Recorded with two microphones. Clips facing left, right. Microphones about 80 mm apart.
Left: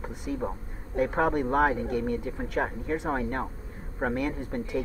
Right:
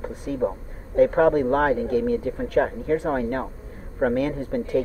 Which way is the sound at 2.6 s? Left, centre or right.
Centre.